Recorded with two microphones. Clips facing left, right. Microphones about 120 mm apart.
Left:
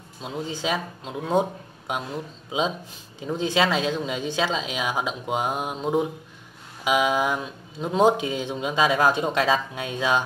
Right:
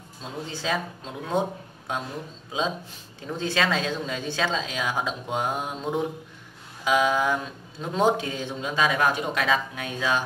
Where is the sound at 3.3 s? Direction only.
15° left (ahead or behind).